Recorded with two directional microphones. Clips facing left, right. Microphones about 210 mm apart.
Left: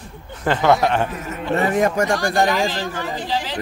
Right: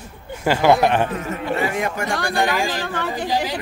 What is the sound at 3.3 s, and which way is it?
Speech, 10° right (ahead or behind).